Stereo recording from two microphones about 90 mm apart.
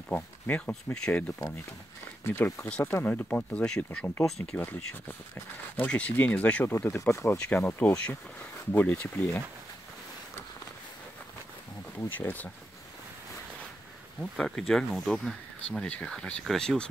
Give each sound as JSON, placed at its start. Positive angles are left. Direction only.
{"t": 0.1, "sound": "speech", "side_deg": 15}
{"t": 2.2, "sound": "speech", "side_deg": 25}
{"t": 5.8, "sound": "speech", "side_deg": 15}
{"t": 6.7, "sound": "speech", "side_deg": 25}
{"t": 7.4, "sound": "speech", "side_deg": 15}
{"t": 12.1, "sound": "speech", "side_deg": 20}
{"t": 14.3, "sound": "speech", "side_deg": 5}